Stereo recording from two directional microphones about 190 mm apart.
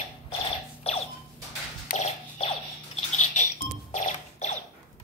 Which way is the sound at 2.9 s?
40° left (ahead or behind).